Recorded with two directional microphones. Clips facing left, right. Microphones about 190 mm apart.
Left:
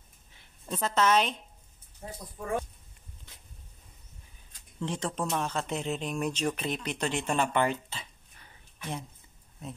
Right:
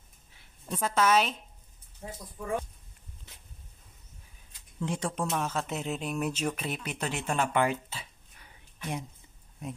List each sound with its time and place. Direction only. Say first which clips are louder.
0.7 s a woman's voice: even; 10° right (ahead or behind)
4.7 s a woman's voice: right 1 dB; 10° right (ahead or behind)